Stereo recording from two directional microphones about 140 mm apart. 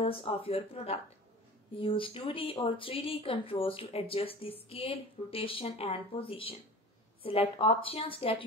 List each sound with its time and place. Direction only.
0.0 s speech: 45° left (ahead or behind)